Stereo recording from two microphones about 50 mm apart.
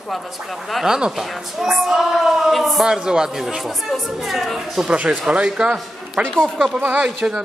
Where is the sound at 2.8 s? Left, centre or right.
Centre.